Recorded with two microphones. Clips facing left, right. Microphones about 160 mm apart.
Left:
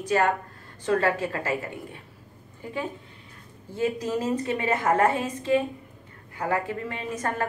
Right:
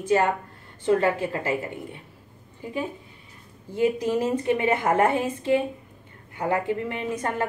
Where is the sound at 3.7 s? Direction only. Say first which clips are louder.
Right 4 dB; 15° right (ahead or behind).